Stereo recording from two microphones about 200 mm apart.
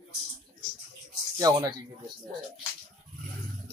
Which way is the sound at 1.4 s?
20° right (ahead or behind).